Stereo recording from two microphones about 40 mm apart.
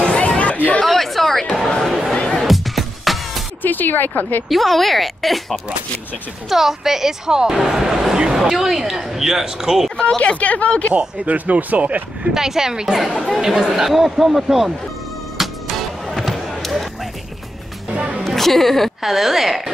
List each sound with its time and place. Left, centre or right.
0.0 s chatter: left
0.8 s a sound: centre
1.4 s a sound: centre
2.3 s music: centre
3.6 s speech: left
4.5 s speech: centre
6.5 s speech: centre
9.9 s speech: left
11.2 s speech: right
12.4 s speech: centre
15.3 s music: centre
16.3 s a sound: centre
17.9 s music: right
18.2 s a woman's voice: centre